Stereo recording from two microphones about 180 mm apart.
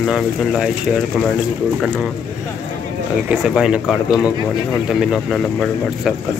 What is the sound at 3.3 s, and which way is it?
Speech, 5° right (ahead or behind).